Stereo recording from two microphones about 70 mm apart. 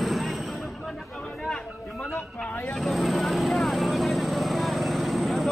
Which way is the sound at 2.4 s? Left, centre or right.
Left.